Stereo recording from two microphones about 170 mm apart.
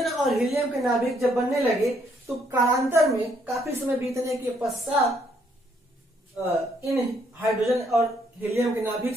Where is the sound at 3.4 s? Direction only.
15° right (ahead or behind).